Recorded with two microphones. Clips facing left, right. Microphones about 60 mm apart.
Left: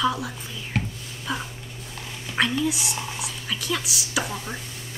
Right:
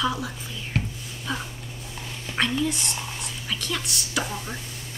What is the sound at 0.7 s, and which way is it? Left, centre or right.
Whispering, centre.